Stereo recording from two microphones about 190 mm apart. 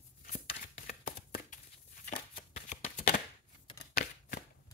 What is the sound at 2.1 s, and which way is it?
Shuffling cards, 40° left (ahead or behind).